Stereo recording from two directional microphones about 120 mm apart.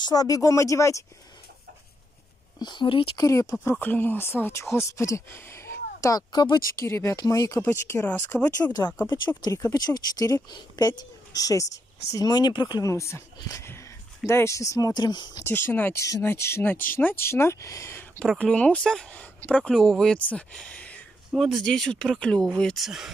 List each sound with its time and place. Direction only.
0.0 s speech: 30° left (ahead or behind)
2.6 s speech: 40° left (ahead or behind)
3.2 s speech: 30° left (ahead or behind)
3.7 s speech: 15° left (ahead or behind); by 6.9 s 35° left (ahead or behind)
6.9 s speech: 25° left (ahead or behind)
9.4 s speech: 30° left (ahead or behind)
15.4 s speech: 20° left (ahead or behind)
18.4 s speech: 10° left (ahead or behind)